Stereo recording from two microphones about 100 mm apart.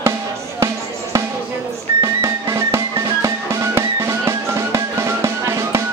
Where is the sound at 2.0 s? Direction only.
30° right (ahead or behind).